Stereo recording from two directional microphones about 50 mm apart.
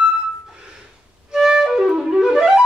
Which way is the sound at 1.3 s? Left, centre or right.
Centre.